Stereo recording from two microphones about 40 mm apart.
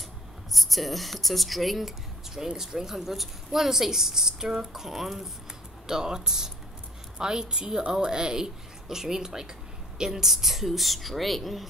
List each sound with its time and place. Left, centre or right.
0.5 s a woman's voice: centre
5.9 s a woman's voice: centre